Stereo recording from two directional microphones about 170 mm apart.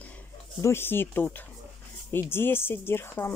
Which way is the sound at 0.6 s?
15° left (ahead or behind).